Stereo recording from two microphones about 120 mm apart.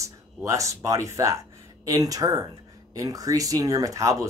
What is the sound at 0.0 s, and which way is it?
Speech, 25° right (ahead or behind).